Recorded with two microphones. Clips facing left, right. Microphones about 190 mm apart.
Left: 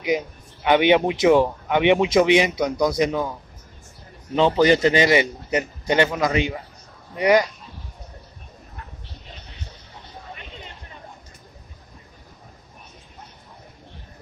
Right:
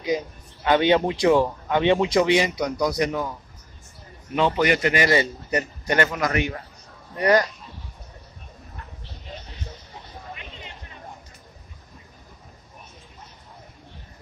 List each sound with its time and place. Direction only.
0.7 s speech: 15° left (ahead or behind)
4.4 s speech: 30° left (ahead or behind); by 7.4 s 15° left (ahead or behind)